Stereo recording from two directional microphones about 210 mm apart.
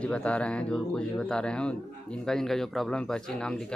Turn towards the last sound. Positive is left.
turn(degrees=5)  # may be behind; listen again after turning